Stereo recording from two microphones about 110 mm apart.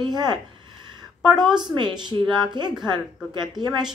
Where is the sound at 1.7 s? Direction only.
45° right (ahead or behind).